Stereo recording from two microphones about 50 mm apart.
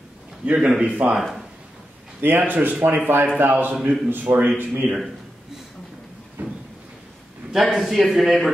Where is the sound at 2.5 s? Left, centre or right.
Right.